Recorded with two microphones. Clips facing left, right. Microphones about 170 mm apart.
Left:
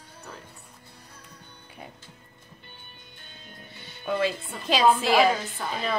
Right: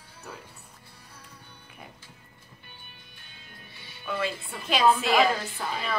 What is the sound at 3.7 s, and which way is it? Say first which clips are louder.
Music: left 3 dB; 50° left (ahead or behind).